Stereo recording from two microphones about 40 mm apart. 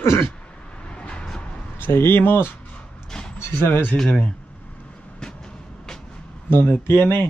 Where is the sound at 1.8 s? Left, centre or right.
Left.